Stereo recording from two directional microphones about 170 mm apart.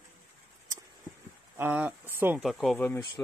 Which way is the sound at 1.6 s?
10° right (ahead or behind).